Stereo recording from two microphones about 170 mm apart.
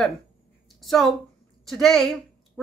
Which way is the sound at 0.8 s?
Centre (ahead or behind).